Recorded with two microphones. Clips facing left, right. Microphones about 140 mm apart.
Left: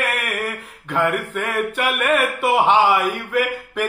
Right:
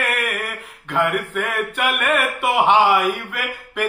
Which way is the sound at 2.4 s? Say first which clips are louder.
Right 1 dB; 10° right (ahead or behind).